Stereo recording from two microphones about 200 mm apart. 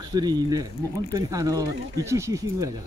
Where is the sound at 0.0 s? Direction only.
20° right (ahead or behind).